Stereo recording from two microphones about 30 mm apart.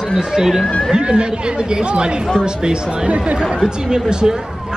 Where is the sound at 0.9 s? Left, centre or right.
Right.